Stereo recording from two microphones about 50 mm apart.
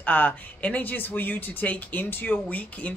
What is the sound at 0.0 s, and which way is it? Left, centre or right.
Speech, left.